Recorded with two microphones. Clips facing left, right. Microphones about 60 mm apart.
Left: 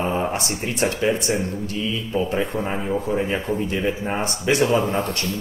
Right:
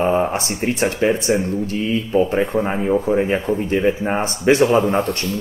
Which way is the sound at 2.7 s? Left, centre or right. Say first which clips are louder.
Right 6 dB; right.